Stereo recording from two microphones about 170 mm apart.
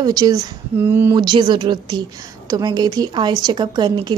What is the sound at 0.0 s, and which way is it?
A woman's voice, 20° right (ahead or behind).